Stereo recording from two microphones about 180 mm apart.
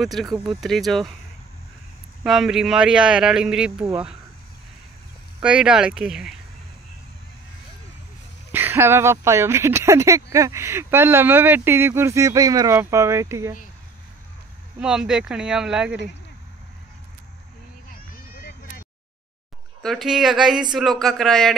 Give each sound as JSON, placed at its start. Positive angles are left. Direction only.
{"t": 0.0, "sound": "speech", "side_deg": 0}
{"t": 2.2, "sound": "speech", "side_deg": 0}
{"t": 5.4, "sound": "speech", "side_deg": -5}
{"t": 8.5, "sound": "speech", "side_deg": -10}
{"t": 14.8, "sound": "speech", "side_deg": -5}
{"t": 17.9, "sound": "a sound", "side_deg": 60}
{"t": 19.8, "sound": "speech", "side_deg": 0}